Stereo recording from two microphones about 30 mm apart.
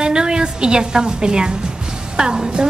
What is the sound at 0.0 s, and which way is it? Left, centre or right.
A woman's voice, right.